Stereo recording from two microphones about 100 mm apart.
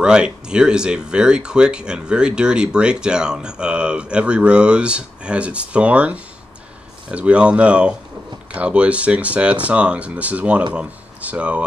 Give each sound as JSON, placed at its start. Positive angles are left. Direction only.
{"t": 0.0, "sound": "speech", "side_deg": -10}